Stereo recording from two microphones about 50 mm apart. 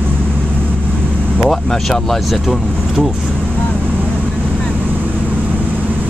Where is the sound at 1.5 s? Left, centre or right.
Centre.